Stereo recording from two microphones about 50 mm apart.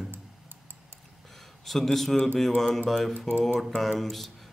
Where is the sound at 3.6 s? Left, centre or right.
Centre.